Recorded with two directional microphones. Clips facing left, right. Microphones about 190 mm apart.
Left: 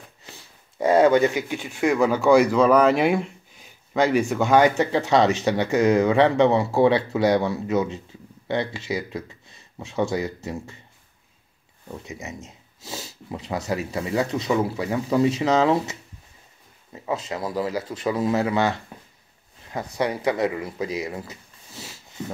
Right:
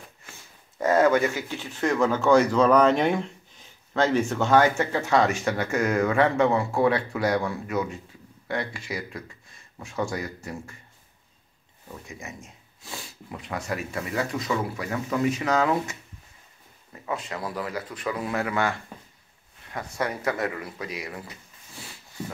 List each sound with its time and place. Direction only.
1.0 s speech: 20° left (ahead or behind)
12.1 s speech: 20° left (ahead or behind)